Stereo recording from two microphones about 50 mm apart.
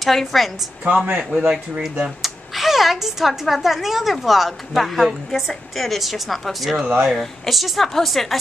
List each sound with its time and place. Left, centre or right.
0.0 s speech: centre
1.0 s speech: right
1.4 s speech: centre